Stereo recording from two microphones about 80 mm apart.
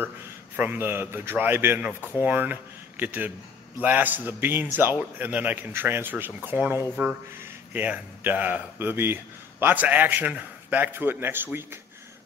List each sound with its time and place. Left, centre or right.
0.6 s speech: right